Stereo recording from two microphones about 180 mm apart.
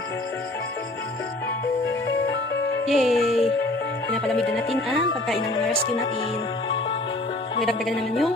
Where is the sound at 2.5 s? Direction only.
90° left.